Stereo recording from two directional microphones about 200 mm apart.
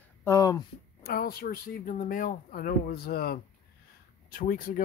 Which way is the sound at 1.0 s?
50° left (ahead or behind).